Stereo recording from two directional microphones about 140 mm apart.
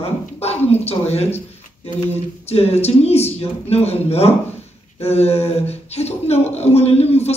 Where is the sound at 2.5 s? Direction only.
45° left (ahead or behind).